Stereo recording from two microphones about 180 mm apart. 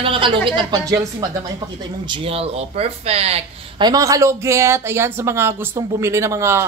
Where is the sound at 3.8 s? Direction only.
20° right (ahead or behind).